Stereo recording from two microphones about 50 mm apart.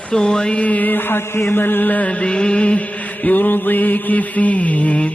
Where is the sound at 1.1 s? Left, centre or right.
Left.